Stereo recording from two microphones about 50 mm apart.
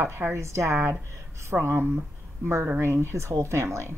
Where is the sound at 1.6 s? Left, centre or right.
Right.